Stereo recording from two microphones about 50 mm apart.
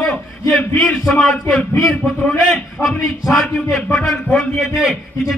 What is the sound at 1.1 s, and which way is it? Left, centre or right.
A man's voice, centre.